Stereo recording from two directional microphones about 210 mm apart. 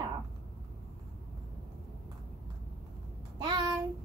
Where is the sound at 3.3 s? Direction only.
20° right (ahead or behind).